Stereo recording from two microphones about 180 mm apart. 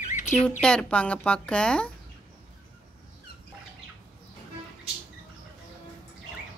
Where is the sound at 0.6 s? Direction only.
5° left (ahead or behind).